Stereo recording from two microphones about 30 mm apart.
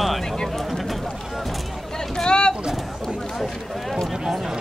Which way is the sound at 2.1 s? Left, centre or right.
Left.